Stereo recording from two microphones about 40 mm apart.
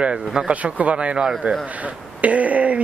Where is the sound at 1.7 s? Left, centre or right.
Right.